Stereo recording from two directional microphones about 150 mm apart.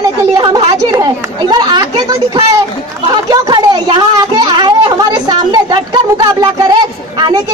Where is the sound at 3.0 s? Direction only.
25° right (ahead or behind).